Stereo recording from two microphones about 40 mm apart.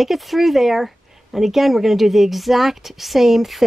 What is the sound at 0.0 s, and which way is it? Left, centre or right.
A woman's voice, centre.